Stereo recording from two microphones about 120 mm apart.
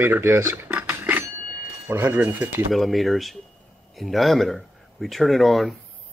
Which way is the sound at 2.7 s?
Centre (ahead or behind).